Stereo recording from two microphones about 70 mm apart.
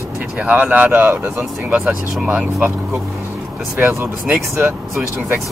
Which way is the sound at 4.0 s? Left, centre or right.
Right.